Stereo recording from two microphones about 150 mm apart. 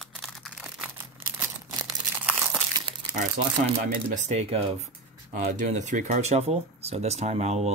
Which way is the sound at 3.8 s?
50° right (ahead or behind).